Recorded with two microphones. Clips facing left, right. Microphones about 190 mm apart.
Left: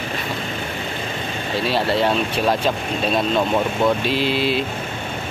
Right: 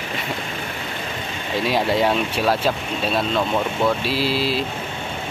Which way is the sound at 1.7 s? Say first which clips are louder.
Even; 15° right (ahead or behind).